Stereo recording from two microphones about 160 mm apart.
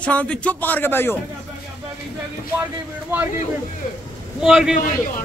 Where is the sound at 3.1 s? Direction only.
10° right (ahead or behind).